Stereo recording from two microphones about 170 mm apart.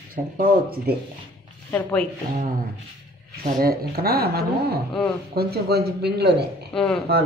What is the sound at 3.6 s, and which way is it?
Speech, 65° right (ahead or behind).